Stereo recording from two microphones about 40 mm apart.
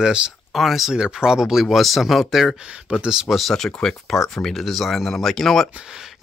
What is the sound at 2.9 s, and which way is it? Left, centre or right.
Speech, right.